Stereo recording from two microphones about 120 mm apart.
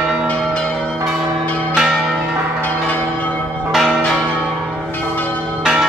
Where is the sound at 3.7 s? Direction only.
5° right (ahead or behind).